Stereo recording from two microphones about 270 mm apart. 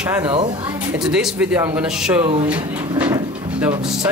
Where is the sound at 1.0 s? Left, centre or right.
Centre.